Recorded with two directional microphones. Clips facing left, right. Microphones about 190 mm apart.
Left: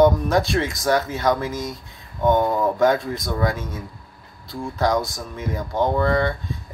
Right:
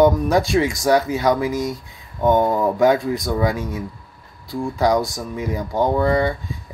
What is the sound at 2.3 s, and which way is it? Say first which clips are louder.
Speech: right 3 dB; 10° right (ahead or behind).